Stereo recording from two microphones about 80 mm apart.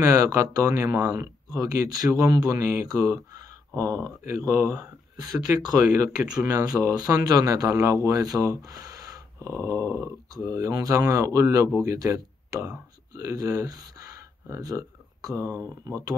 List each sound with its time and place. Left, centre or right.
0.0 s a man's voice: right